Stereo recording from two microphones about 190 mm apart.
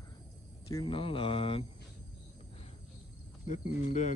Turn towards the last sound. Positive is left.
turn(degrees=40)  # may be behind; listen again after turning